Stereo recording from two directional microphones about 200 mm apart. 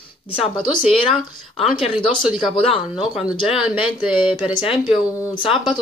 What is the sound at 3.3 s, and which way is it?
Speech, 25° left (ahead or behind).